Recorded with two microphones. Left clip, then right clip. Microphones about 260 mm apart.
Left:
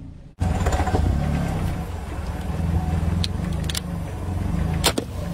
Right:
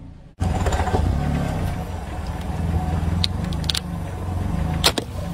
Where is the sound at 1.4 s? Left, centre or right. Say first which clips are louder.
Right 1 dB; right.